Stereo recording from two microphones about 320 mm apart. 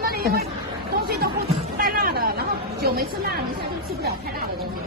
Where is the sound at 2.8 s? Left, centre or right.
Right.